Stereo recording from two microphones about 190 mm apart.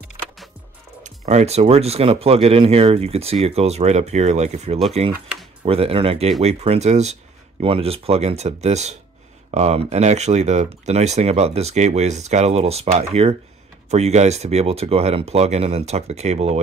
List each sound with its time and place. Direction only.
1.0 s speech: 40° right (ahead or behind)
5.1 s a sound: 5° right (ahead or behind)
5.7 s speech: 30° right (ahead or behind)